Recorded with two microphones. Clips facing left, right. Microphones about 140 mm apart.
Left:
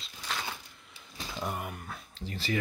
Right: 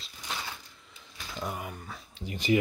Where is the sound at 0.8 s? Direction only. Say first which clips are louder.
Even; centre (ahead or behind).